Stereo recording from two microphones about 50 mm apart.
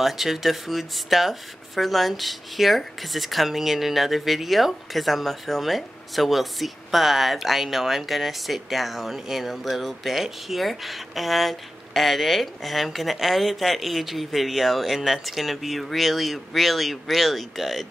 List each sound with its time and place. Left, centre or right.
0.0 s speech: centre